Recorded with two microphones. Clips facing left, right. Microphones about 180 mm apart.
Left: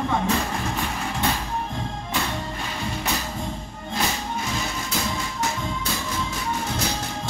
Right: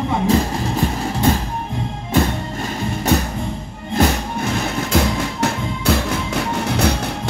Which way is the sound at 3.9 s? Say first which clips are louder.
Right 9 dB; 60° right (ahead or behind).